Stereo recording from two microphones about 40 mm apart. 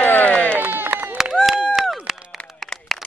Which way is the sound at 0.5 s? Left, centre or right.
Right.